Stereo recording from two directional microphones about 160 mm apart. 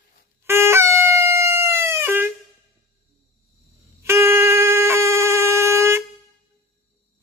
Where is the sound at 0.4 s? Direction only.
15° right (ahead or behind).